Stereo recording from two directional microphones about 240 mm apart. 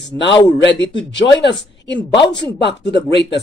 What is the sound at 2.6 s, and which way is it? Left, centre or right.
Speech, left.